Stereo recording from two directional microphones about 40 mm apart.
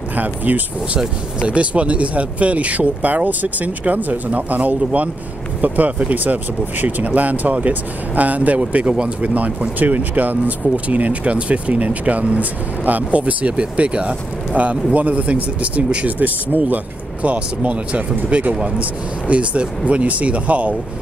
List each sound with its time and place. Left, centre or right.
0.1 s speech: right
0.9 s speech: right
9.3 s speech: right